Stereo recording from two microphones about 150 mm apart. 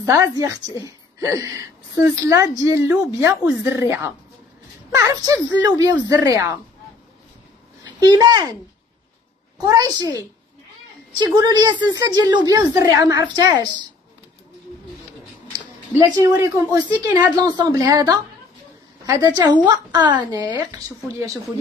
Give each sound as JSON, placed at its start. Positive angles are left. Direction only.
{"t": 0.0, "sound": "a woman's voice", "side_deg": -20}
{"t": 8.0, "sound": "a woman's voice", "side_deg": -25}
{"t": 9.6, "sound": "a woman's voice", "side_deg": -25}
{"t": 11.1, "sound": "a woman's voice", "side_deg": -25}
{"t": 15.9, "sound": "a woman's voice", "side_deg": -20}